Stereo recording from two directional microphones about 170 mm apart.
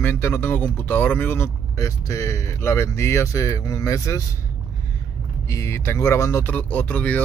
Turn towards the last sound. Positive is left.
turn(degrees=10)  # may be behind; listen again after turning